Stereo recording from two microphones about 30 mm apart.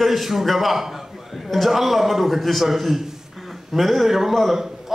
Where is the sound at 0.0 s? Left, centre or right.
Centre.